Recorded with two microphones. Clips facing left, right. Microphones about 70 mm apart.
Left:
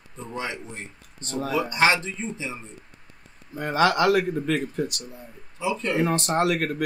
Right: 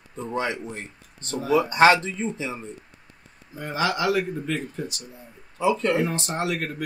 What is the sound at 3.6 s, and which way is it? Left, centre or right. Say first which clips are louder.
Speech: left 4 dB; left.